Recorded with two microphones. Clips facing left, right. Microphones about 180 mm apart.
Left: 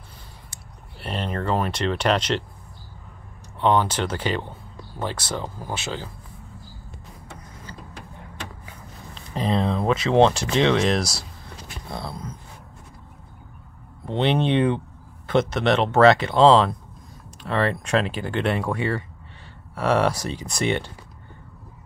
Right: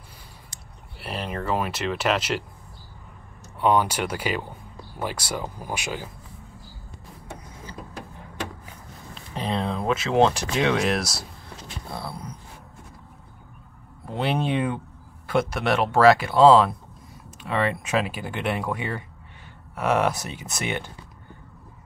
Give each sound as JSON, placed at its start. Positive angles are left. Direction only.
{"t": 0.9, "sound": "speech", "side_deg": -5}
{"t": 3.6, "sound": "speech", "side_deg": -10}
{"t": 9.1, "sound": "a sound", "side_deg": 0}
{"t": 10.7, "sound": "speech", "side_deg": -5}
{"t": 14.0, "sound": "speech", "side_deg": -5}